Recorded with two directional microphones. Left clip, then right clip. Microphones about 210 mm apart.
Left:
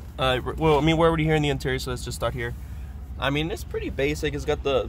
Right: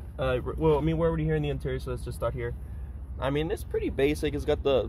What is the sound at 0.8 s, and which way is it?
Speech, 25° left (ahead or behind).